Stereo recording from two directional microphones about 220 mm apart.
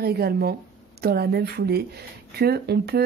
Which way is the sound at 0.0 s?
45° right (ahead or behind).